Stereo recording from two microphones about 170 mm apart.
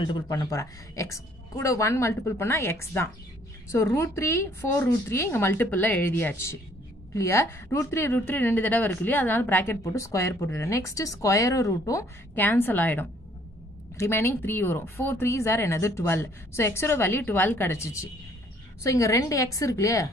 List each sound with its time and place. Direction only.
0.0 s a woman's voice: 25° left (ahead or behind)